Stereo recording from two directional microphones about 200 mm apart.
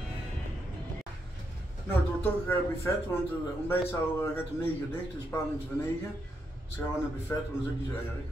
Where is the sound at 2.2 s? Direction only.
10° left (ahead or behind).